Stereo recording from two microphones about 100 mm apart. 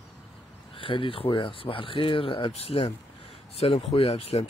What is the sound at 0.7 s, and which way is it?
Speech, 60° left (ahead or behind).